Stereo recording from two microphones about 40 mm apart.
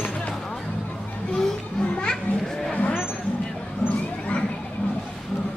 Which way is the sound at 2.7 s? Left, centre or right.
Left.